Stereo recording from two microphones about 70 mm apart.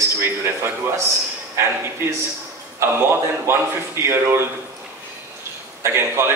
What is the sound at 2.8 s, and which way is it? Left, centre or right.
A man's voice, right.